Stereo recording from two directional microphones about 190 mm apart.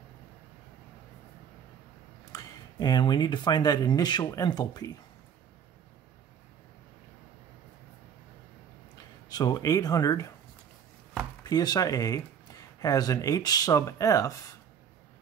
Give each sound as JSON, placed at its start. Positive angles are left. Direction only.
{"t": 2.3, "sound": "speech", "side_deg": 20}
{"t": 9.3, "sound": "speech", "side_deg": 20}
{"t": 11.4, "sound": "speech", "side_deg": 20}